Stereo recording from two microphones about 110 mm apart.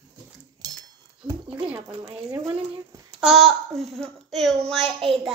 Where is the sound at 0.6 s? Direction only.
45° right (ahead or behind).